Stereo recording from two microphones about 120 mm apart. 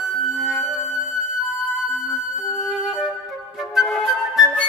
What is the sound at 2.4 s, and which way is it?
Flute, centre (ahead or behind).